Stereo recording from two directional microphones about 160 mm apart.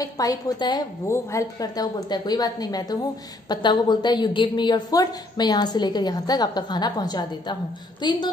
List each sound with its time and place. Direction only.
0.0 s a woman's voice: 20° left (ahead or behind)